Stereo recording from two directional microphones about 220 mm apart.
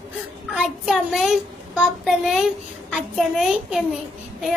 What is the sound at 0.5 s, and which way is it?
A child's voice, centre (ahead or behind).